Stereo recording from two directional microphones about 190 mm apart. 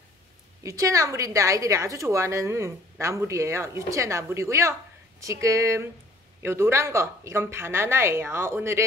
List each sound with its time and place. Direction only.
0.7 s a woman's voice: 15° right (ahead or behind)